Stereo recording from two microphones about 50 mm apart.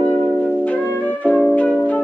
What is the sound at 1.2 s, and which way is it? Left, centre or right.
Music, left.